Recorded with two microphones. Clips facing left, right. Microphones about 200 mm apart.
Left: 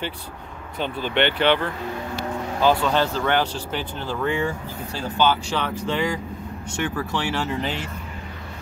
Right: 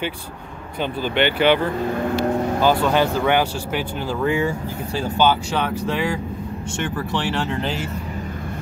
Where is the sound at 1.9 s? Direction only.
55° right (ahead or behind).